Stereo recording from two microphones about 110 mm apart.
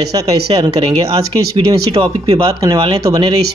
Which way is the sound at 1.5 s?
55° right (ahead or behind).